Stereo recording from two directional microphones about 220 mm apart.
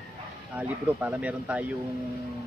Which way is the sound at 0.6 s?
5° right (ahead or behind).